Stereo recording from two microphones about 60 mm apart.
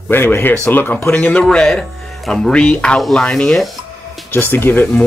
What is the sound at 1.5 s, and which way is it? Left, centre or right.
Speech, centre.